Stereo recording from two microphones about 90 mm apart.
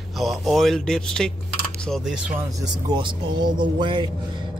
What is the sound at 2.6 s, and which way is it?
Speech, 55° right (ahead or behind).